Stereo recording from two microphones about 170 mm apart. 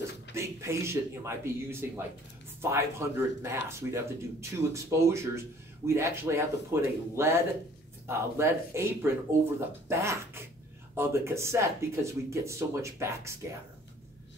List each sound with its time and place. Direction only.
0.3 s speech: 15° right (ahead or behind)